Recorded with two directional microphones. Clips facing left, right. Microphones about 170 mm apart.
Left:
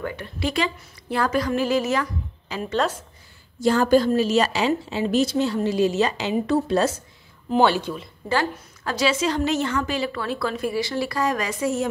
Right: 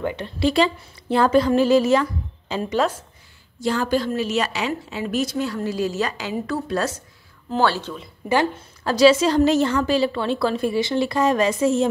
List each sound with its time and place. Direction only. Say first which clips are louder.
0.0 s a woman's voice: right 5 dB; 25° right (ahead or behind)
3.6 s a woman's voice: left 4 dB; 45° left (ahead or behind); by 7.9 s 15° left (ahead or behind)
8.5 s a woman's voice: right 7 dB; 35° right (ahead or behind)